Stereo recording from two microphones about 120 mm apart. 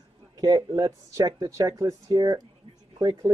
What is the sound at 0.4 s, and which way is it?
Speech, 30° right (ahead or behind).